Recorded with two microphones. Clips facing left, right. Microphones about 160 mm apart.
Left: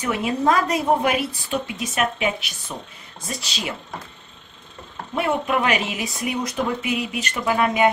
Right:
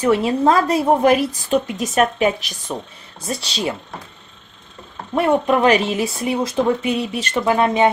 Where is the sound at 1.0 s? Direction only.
40° right (ahead or behind).